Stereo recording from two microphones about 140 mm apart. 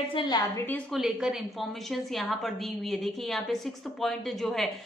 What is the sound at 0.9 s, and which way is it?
A woman's voice, centre (ahead or behind).